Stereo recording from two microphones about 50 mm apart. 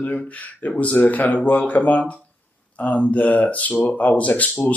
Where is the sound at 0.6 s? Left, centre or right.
Left.